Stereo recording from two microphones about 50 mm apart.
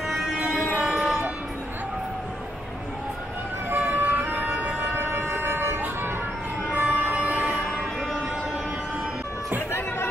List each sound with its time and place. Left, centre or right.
0.8 s vehicle: centre
3.7 s emergency vehicle: right
4.9 s siren: right
6.7 s emergency vehicle: right